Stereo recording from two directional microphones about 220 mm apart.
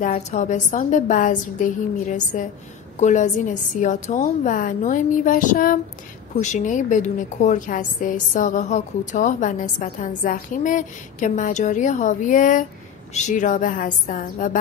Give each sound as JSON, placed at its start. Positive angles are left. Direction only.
{"t": 0.0, "sound": "a woman's voice", "side_deg": 35}